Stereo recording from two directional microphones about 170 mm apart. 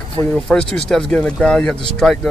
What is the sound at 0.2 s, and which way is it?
Speech, 5° left (ahead or behind).